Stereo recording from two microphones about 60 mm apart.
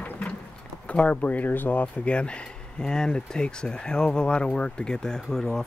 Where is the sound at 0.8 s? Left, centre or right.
Left.